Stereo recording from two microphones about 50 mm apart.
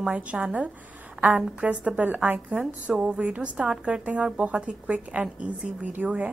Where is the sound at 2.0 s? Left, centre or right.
Right.